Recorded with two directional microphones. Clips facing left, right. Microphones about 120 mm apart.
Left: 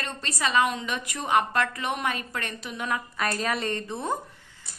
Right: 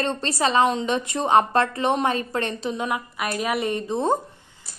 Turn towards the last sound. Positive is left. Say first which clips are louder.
# right 7 dB
turn(degrees=-20)  # may be behind; listen again after turning